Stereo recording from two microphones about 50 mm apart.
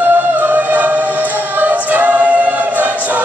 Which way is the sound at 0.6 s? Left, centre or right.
Right.